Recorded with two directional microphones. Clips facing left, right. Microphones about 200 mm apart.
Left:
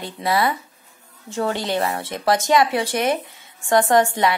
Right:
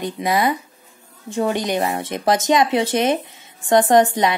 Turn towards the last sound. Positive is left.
turn(degrees=-20)  # may be behind; listen again after turning